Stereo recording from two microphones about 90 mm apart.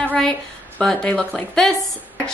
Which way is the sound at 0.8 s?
10° left (ahead or behind).